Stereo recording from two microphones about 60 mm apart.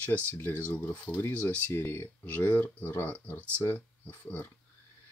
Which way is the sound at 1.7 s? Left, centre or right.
Left.